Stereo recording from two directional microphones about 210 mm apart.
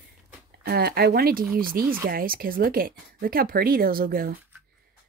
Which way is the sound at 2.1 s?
45° right (ahead or behind).